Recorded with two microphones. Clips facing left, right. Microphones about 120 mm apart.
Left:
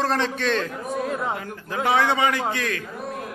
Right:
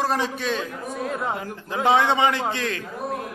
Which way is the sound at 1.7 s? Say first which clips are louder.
Right 2 dB; 20° right (ahead or behind).